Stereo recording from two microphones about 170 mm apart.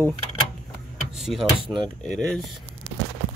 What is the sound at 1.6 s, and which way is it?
Speech, 25° right (ahead or behind).